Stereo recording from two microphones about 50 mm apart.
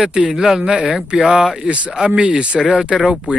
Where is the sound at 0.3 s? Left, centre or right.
Centre.